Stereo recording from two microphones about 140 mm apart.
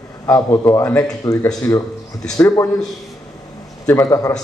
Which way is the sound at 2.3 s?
25° left (ahead or behind).